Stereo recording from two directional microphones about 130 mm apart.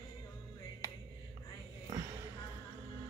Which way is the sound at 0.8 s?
25° left (ahead or behind).